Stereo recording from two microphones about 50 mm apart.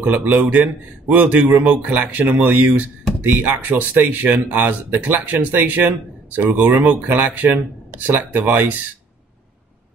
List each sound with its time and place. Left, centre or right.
0.0 s a man's voice: right